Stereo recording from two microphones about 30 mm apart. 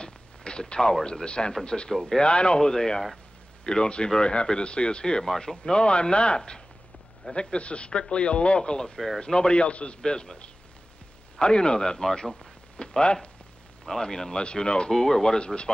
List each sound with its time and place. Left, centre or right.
0.0 s a sound: left
1.0 s a man's voice: left
2.6 s a man's voice: left
7.3 s speech: left
8.9 s speech: centre
9.2 s a man's voice: left
9.6 s speech: left
10.0 s a man's voice: left
13.0 s speech: left
13.8 s a man's voice: centre
14.4 s speech: left
14.9 s speech: centre
15.3 s speech: left